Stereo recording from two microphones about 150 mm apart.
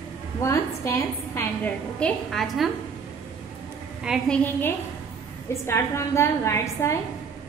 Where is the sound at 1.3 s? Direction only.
10° left (ahead or behind).